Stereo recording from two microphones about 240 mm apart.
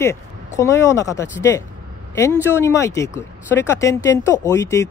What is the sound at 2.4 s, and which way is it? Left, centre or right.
Speech, centre.